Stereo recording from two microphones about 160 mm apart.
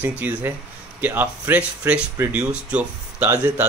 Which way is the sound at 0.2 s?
10° right (ahead or behind).